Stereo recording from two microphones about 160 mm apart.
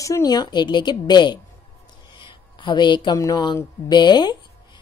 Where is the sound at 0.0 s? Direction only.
20° left (ahead or behind).